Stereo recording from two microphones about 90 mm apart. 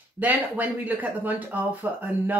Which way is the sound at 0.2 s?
20° right (ahead or behind).